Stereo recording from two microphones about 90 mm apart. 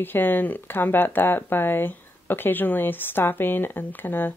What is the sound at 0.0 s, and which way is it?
Speech, 25° left (ahead or behind).